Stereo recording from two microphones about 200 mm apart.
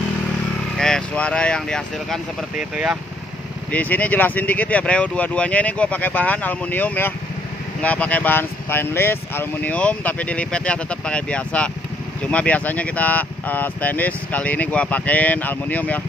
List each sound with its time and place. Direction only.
0.7 s speech: 5° left (ahead or behind)
3.7 s speech: 10° left (ahead or behind)